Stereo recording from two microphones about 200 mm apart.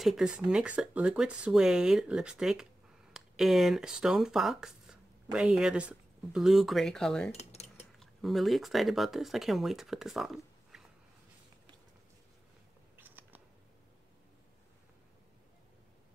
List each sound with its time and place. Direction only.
0.0 s speech: centre (ahead or behind)
7.3 s cutlery: 35° left (ahead or behind)
8.0 s speech: centre (ahead or behind)
12.9 s scissors: 10° right (ahead or behind)